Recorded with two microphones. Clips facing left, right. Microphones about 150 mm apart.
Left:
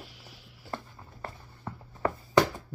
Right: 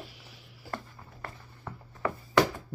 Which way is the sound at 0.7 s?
15° left (ahead or behind).